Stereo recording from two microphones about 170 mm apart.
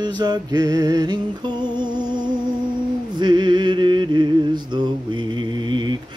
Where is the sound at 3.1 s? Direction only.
25° right (ahead or behind).